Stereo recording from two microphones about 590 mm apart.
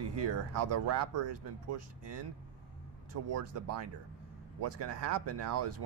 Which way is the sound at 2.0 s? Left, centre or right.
Right.